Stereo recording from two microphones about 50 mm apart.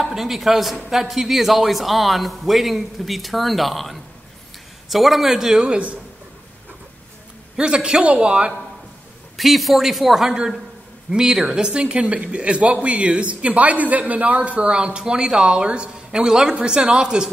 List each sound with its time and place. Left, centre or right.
0.0 s a man's voice: centre
7.5 s speech: centre
9.4 s a man's voice: centre